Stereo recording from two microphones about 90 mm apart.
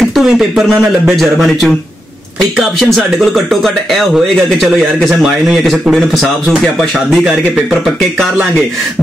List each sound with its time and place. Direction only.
0.1 s a man's voice: 5° right (ahead or behind)
3.0 s a man's voice: centre (ahead or behind)